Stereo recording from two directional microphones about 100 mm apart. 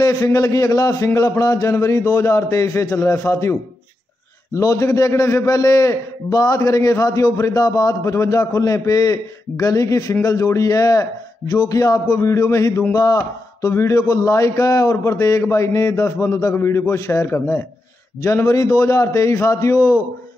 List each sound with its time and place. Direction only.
0.0 s a man's voice: 35° left (ahead or behind)
4.6 s a man's voice: 30° left (ahead or behind)